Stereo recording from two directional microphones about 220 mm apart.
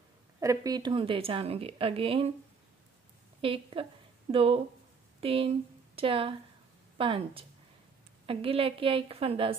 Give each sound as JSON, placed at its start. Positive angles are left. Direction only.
{"t": 0.4, "sound": "a woman's voice", "side_deg": -15}
{"t": 3.3, "sound": "a woman's voice", "side_deg": -25}